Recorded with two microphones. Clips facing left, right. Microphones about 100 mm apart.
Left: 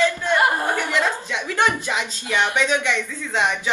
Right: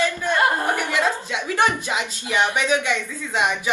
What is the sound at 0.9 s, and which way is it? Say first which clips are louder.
Speech: even; 15° right (ahead or behind).